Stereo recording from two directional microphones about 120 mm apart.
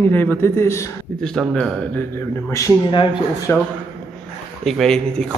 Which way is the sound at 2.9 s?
40° left (ahead or behind).